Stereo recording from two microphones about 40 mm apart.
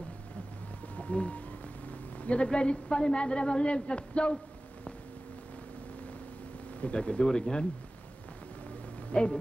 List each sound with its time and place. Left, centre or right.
0.9 s a woman's voice: left
6.8 s a woman's voice: left
9.1 s a woman's voice: left